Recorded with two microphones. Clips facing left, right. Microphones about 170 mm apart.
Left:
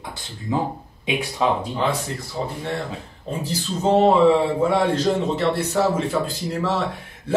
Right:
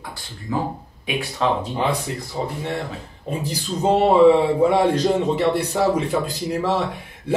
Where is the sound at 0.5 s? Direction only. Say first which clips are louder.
Left 1 dB; 20° left (ahead or behind).